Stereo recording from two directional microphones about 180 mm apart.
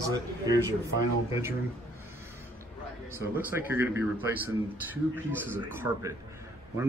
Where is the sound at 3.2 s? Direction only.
10° right (ahead or behind).